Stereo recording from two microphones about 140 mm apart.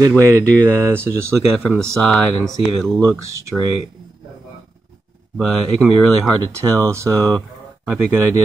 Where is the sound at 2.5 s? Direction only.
5° left (ahead or behind).